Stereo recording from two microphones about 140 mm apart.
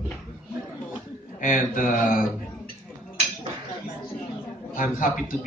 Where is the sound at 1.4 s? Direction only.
70° left (ahead or behind).